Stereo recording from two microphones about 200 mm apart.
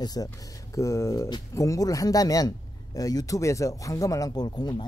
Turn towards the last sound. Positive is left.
turn(degrees=20)  # may be behind; listen again after turning